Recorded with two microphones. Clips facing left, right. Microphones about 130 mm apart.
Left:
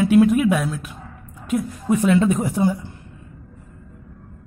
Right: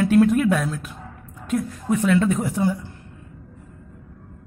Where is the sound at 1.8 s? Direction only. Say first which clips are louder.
Left 2 dB; 20° left (ahead or behind).